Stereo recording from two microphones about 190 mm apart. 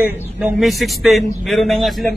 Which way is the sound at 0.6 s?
Centre (ahead or behind).